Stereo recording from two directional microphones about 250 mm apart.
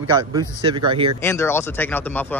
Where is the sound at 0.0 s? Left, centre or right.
Centre.